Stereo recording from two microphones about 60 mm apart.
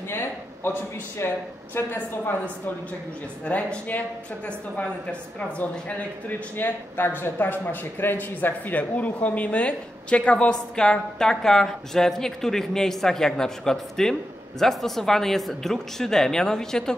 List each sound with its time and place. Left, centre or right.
0.1 s a woman's voice: left; by 16.9 s centre